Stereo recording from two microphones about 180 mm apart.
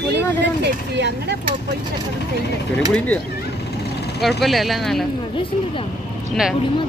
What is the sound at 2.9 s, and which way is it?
Speech, 10° left (ahead or behind).